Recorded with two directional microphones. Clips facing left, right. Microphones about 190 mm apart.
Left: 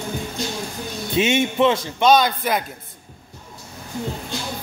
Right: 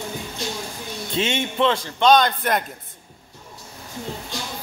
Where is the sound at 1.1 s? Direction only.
10° left (ahead or behind).